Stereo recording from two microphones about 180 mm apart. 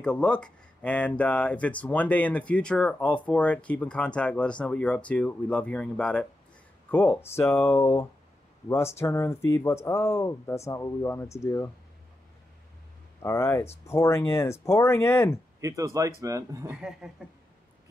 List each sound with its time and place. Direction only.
0.0 s speech: 5° left (ahead or behind)
13.2 s speech: 15° left (ahead or behind)
15.6 s speech: 15° right (ahead or behind)
16.6 s speech: 5° right (ahead or behind)